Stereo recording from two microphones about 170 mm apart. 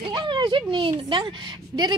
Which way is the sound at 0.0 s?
30° right (ahead or behind).